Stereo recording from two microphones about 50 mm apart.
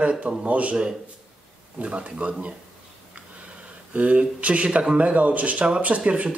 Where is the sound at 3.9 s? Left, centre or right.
Right.